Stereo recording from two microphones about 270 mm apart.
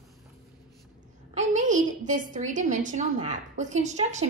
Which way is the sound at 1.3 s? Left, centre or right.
Right.